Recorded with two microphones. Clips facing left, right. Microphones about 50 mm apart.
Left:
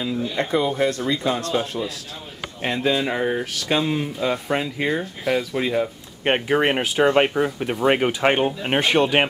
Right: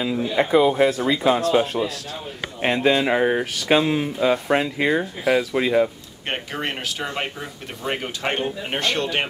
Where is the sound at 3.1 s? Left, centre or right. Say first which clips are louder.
Right 3 dB; centre.